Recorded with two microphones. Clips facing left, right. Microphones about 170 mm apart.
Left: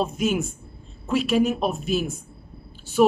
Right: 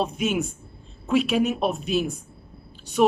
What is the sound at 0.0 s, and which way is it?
Speech, centre (ahead or behind).